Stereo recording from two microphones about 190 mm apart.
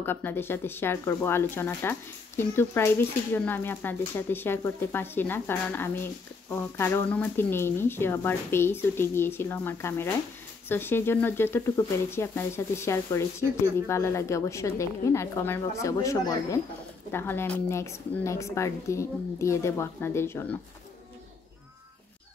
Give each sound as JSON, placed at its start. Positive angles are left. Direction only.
{"t": 0.0, "sound": "speech", "side_deg": 10}